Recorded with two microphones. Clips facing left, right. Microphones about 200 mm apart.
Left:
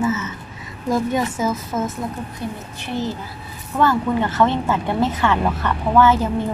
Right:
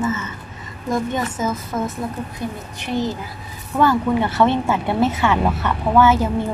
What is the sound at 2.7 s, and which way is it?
A woman's voice, 15° right (ahead or behind).